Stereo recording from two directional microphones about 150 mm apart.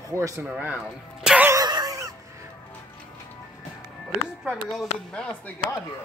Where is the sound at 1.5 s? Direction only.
25° right (ahead or behind).